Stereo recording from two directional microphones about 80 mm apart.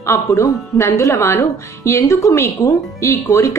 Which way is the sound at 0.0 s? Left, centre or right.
Left.